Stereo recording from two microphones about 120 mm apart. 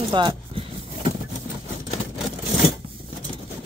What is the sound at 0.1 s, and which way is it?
Speech, 40° right (ahead or behind).